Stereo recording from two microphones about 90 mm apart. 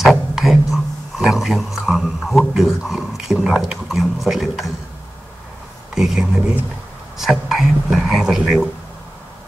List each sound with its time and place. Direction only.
0.0 s speech: 5° right (ahead or behind)
5.9 s speech: 5° right (ahead or behind)